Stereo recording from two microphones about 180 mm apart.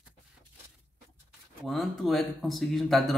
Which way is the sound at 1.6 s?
Centre (ahead or behind).